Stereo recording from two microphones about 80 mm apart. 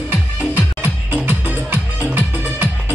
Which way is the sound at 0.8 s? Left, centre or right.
Right.